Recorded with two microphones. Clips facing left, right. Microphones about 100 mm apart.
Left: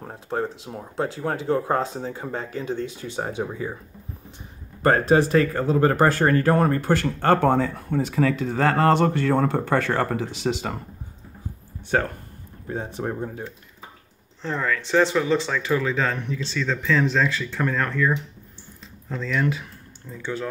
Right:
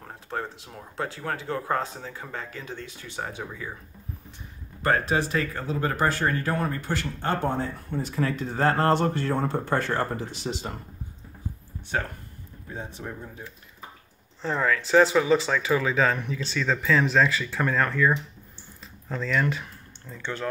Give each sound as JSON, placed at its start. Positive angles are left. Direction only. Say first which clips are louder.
{"t": 0.0, "sound": "speech", "louder": "left 6 dB", "side_deg": 25}
{"t": 4.8, "sound": "speech", "louder": "left 6 dB", "side_deg": 40}
{"t": 11.9, "sound": "speech", "louder": "left 6 dB", "side_deg": 60}
{"t": 14.4, "sound": "speech", "louder": "right 1 dB", "side_deg": -5}